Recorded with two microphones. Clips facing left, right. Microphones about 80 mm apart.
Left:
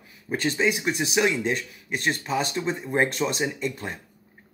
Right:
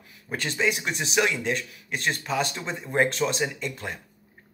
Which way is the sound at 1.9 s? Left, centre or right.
Centre.